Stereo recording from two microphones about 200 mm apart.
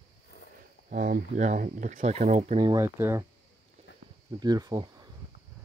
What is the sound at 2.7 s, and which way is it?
Speech, 15° right (ahead or behind).